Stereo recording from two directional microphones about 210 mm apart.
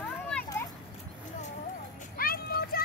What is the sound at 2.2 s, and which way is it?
Child singing, 45° left (ahead or behind).